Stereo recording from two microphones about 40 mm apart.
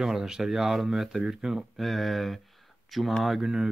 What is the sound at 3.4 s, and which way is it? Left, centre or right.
Speech, centre.